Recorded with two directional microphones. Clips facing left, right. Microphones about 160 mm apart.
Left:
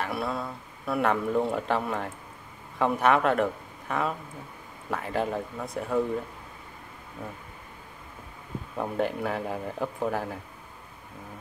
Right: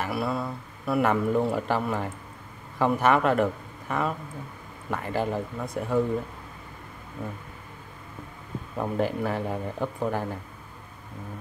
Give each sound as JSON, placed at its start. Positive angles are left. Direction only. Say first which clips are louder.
{"t": 0.0, "sound": "speech", "louder": "right 2 dB", "side_deg": -5}
{"t": 8.7, "sound": "speech", "louder": "right 2 dB", "side_deg": 0}